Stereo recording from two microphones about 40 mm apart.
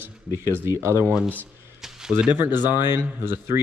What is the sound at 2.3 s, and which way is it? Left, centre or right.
Speech, right.